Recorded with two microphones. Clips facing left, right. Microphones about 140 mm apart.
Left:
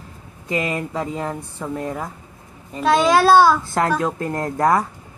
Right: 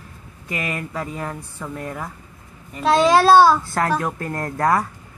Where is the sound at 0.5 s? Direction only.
25° left (ahead or behind).